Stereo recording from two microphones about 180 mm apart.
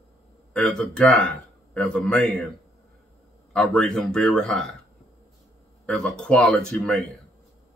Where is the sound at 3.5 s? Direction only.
5° left (ahead or behind).